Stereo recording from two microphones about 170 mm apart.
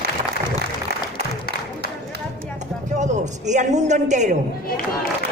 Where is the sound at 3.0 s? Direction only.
45° right (ahead or behind).